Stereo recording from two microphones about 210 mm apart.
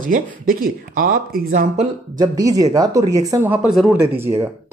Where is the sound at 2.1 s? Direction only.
20° right (ahead or behind); by 4.0 s 5° right (ahead or behind).